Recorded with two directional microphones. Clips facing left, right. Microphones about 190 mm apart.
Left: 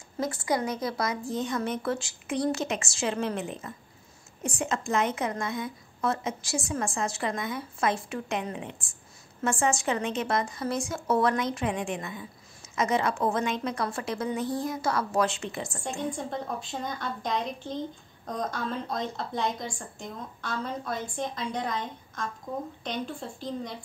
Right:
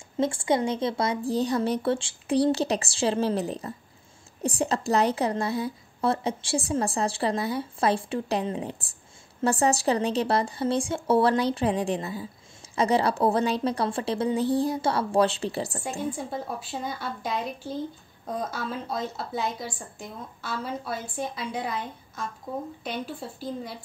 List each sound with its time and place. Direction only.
0.2 s a woman's voice: 25° right (ahead or behind)
15.8 s a woman's voice: 5° right (ahead or behind)